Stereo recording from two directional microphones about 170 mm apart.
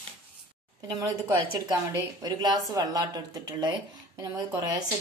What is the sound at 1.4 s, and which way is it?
A woman's voice, 20° right (ahead or behind).